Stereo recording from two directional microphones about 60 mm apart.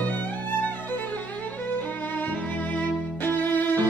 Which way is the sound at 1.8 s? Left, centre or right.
Left.